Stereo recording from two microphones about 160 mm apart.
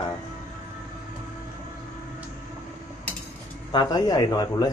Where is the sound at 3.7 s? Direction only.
30° left (ahead or behind).